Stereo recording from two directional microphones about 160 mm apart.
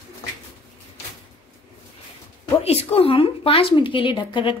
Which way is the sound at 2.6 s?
40° left (ahead or behind).